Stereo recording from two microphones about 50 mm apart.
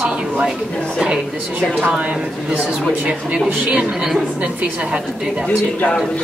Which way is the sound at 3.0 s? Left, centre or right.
Right.